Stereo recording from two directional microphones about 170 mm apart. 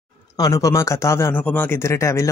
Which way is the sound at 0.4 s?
20° left (ahead or behind).